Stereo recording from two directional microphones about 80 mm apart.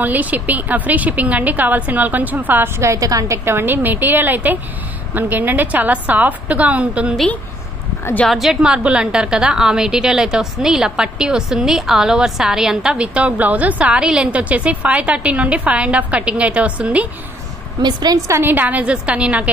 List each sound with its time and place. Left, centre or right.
0.0 s a woman's voice: right
2.8 s a woman's voice: right
3.4 s a woman's voice: right
8.0 s speech: left
8.3 s a woman's voice: centre
17.8 s a woman's voice: right
18.3 s a woman's voice: right